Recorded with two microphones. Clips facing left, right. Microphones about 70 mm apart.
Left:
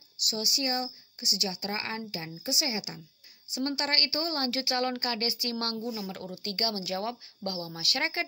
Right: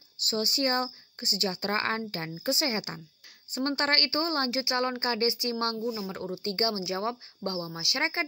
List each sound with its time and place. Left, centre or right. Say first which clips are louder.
0.2 s speech: right 4 dB; right